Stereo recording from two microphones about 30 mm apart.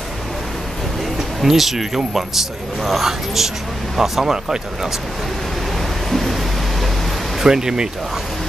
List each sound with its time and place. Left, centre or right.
1.4 s speech: centre
6.0 s music: centre
7.4 s speech: right